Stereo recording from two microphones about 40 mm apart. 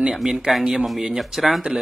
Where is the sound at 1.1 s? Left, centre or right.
Centre.